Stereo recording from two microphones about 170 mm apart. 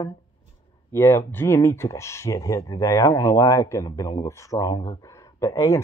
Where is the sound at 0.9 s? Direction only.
15° left (ahead or behind).